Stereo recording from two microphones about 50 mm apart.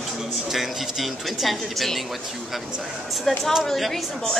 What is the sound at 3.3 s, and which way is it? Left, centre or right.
A woman's voice, centre.